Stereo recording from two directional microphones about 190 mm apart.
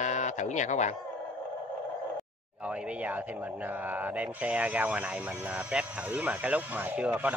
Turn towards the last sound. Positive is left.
turn(degrees=-10)  # may be behind; listen again after turning